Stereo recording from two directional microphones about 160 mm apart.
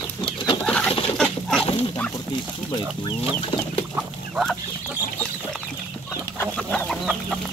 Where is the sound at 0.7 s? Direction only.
5° left (ahead or behind).